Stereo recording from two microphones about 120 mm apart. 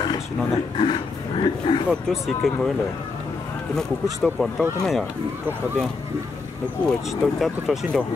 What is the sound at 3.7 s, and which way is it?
Speech, centre (ahead or behind).